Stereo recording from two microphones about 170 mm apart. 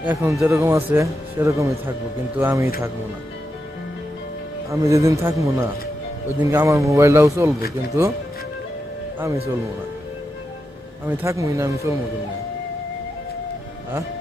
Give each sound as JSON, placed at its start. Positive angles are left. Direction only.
{"t": 0.1, "sound": "speech", "side_deg": -15}
{"t": 4.6, "sound": "speech", "side_deg": -20}
{"t": 11.1, "sound": "speech", "side_deg": -15}